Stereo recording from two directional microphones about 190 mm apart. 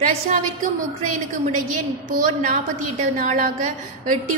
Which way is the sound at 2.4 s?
40° right (ahead or behind).